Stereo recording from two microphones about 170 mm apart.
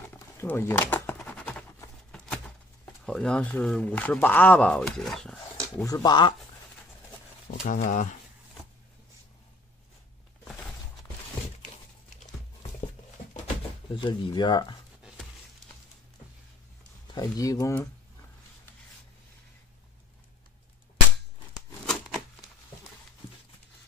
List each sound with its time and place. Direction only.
0.1 s a sound: 15° left (ahead or behind)
5.9 s speech: 20° left (ahead or behind)
7.6 s speech: 55° left (ahead or behind)
13.9 s speech: 30° left (ahead or behind)
17.1 s speech: 20° left (ahead or behind)
21.8 s a sound: centre (ahead or behind)